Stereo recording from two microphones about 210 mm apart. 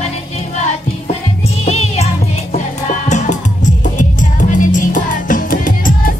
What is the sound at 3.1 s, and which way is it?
Music, 35° left (ahead or behind).